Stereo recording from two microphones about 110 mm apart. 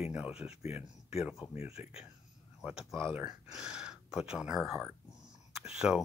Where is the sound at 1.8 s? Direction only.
90° left.